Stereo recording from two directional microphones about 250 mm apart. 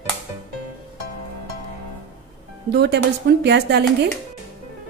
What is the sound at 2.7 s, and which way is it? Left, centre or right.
Speech, right.